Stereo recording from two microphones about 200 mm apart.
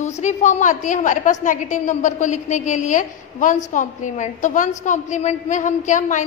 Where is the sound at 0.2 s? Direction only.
35° left (ahead or behind).